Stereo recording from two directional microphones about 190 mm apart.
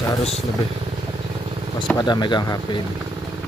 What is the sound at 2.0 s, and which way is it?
Speech, 25° left (ahead or behind).